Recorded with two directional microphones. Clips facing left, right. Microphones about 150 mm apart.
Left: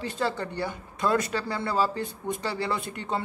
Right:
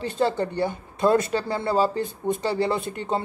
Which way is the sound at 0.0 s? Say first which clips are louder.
Right 6 dB; 25° right (ahead or behind).